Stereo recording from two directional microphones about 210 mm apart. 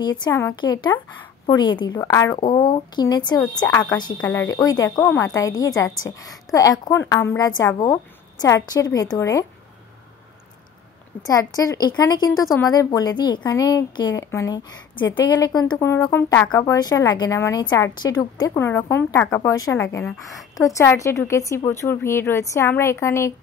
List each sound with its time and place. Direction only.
0.2 s a woman's voice: 15° left (ahead or behind)
11.2 s a woman's voice: 15° left (ahead or behind)